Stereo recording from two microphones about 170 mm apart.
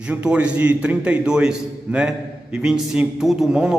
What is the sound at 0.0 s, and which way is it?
A man's voice, 5° right (ahead or behind).